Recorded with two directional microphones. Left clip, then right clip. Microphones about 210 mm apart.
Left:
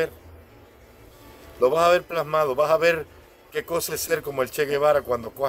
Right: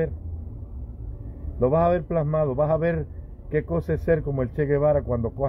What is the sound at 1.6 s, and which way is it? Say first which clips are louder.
A man's voice: left 3 dB; 10° left (ahead or behind).